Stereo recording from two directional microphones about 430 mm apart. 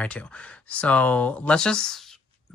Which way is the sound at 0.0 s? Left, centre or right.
Centre.